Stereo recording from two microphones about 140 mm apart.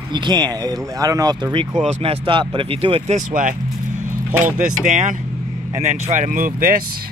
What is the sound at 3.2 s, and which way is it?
Speech, 70° right (ahead or behind).